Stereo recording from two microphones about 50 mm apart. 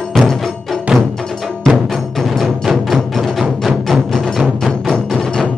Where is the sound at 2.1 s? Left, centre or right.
Centre.